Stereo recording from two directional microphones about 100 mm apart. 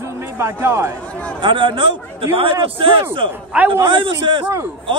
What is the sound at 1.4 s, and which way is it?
A man's voice, 55° right (ahead or behind).